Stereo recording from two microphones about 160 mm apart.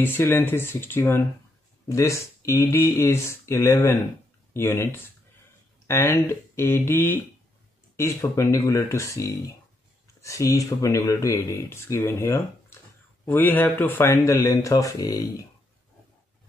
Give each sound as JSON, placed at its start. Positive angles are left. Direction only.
{"t": 0.0, "sound": "speech", "side_deg": 15}